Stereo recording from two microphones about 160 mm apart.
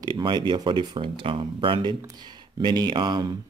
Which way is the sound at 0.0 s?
30° right (ahead or behind).